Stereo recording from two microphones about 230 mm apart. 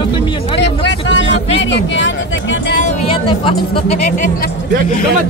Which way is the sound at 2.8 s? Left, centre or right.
Left.